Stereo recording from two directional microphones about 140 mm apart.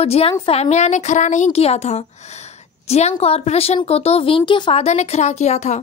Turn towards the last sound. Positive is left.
turn(degrees=55)  # may be behind; listen again after turning